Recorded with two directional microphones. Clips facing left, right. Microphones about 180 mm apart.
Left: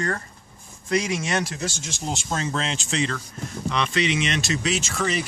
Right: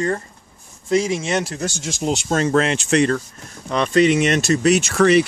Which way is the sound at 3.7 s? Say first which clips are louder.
Right 9 dB; 45° right (ahead or behind).